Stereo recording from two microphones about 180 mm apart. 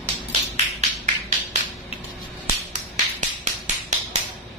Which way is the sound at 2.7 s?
40° right (ahead or behind).